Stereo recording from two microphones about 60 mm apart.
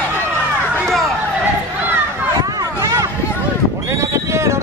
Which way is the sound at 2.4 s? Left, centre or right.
Right.